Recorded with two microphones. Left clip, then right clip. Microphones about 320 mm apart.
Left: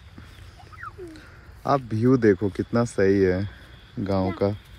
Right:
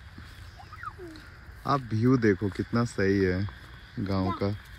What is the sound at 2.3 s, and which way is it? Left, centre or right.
Speech, left.